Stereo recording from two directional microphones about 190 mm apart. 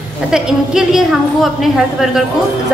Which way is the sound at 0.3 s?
5° right (ahead or behind).